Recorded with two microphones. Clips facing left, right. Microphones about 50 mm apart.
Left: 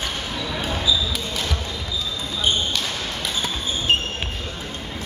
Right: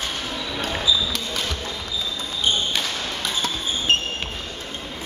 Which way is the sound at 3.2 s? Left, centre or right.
Centre.